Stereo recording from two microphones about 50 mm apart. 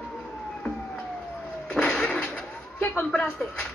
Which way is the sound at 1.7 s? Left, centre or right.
Centre.